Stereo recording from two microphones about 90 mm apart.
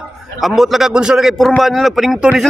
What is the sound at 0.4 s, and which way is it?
A man's voice, centre (ahead or behind).